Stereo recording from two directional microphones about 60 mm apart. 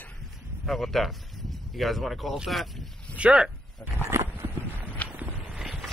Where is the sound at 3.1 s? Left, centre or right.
Centre.